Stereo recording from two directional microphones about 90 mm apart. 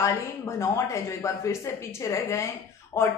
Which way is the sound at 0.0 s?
35° left (ahead or behind).